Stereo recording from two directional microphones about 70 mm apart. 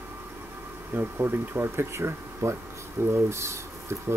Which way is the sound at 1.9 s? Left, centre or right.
Right.